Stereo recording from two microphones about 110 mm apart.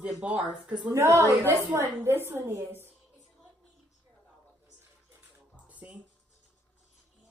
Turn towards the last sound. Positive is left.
turn(degrees=-10)  # may be behind; listen again after turning